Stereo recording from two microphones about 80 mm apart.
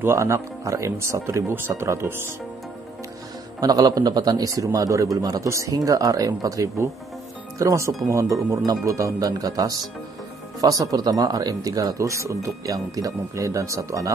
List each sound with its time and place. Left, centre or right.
0.0 s speech: right
3.6 s speech: right